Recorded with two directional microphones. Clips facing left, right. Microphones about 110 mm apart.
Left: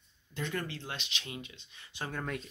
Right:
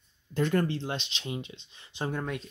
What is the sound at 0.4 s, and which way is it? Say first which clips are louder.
Speech: right 10 dB; 50° right (ahead or behind).